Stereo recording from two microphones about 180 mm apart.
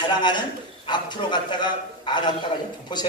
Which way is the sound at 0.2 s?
25° left (ahead or behind).